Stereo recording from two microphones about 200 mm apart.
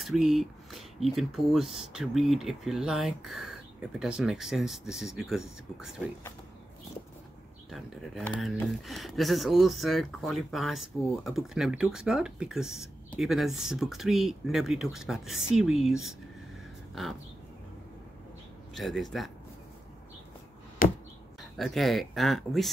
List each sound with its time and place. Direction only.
0.0 s speech: centre (ahead or behind)
7.7 s speech: centre (ahead or behind)
18.8 s speech: centre (ahead or behind)
20.8 s chop: 45° left (ahead or behind)
21.4 s speech: centre (ahead or behind)